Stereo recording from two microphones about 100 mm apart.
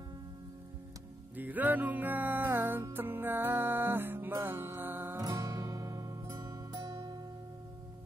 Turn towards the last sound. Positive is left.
turn(degrees=-35)  # may be behind; listen again after turning